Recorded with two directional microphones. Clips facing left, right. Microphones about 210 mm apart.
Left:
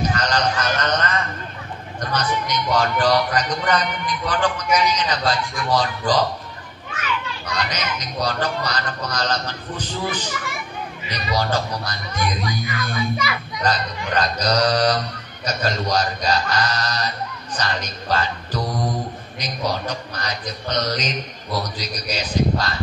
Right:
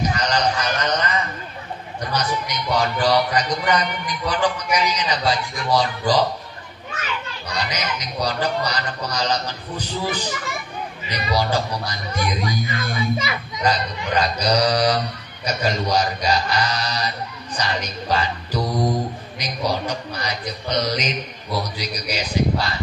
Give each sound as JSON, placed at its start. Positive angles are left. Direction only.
{"t": 0.1, "sound": "a sound", "side_deg": -10}
{"t": 2.0, "sound": "a man's voice", "side_deg": -10}
{"t": 7.5, "sound": "a man's voice", "side_deg": -10}
{"t": 12.6, "sound": "speech", "side_deg": -25}
{"t": 13.7, "sound": "a man's voice", "side_deg": -10}